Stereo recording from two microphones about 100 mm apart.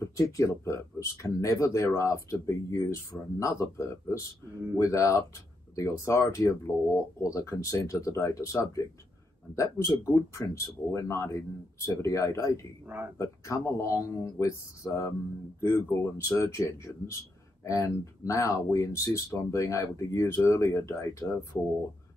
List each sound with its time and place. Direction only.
0.0 s speech: 30° left (ahead or behind)
12.8 s speech: 20° right (ahead or behind)
13.2 s speech: 30° left (ahead or behind)